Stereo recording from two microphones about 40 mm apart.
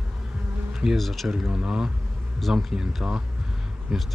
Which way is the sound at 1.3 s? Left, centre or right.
Centre.